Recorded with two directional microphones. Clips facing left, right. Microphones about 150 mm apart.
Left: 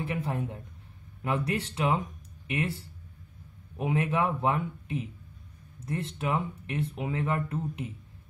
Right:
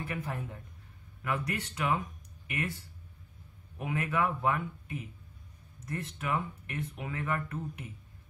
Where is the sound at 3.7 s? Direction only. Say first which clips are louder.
Left 4 dB; 30° left (ahead or behind).